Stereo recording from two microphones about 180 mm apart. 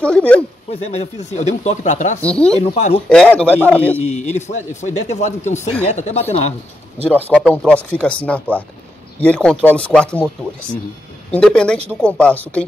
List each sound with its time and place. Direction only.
0.0 s speech: 5° left (ahead or behind)
0.7 s speech: 35° left (ahead or behind)
2.2 s speech: 5° left (ahead or behind)
2.6 s speech: 40° left (ahead or behind)
3.1 s speech: 5° left (ahead or behind)
4.0 s speech: 40° left (ahead or behind)
7.1 s speech: 10° left (ahead or behind)
11.3 s speech: 5° left (ahead or behind)